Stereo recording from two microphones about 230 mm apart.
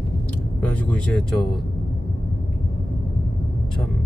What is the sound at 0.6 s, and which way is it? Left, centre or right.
Speech, centre.